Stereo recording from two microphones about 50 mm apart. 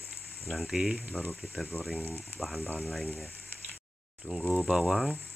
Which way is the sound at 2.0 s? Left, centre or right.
Right.